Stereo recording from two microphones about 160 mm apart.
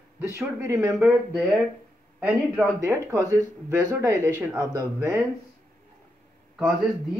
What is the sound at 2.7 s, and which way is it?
Speech, 15° right (ahead or behind).